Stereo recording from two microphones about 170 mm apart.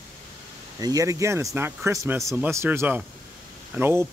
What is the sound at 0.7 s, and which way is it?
Speech, 20° right (ahead or behind).